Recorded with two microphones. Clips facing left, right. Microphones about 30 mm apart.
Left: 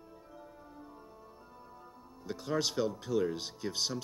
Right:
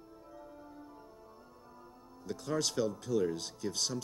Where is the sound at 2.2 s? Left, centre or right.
Centre.